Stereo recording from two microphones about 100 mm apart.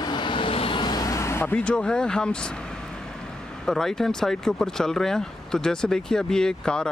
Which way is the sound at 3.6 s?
5° left (ahead or behind).